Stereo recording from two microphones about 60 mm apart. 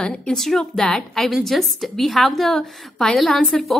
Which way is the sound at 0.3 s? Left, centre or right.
Centre.